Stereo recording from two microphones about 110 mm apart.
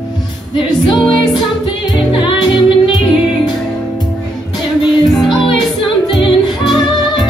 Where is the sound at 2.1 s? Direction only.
50° left (ahead or behind).